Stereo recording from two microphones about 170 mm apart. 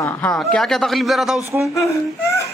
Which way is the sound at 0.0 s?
5° left (ahead or behind).